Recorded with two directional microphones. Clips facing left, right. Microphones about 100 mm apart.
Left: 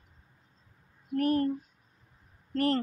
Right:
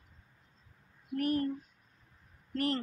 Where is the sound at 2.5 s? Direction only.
35° left (ahead or behind).